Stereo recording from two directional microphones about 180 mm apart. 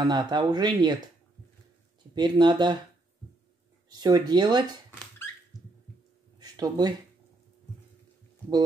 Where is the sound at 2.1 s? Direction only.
25° right (ahead or behind).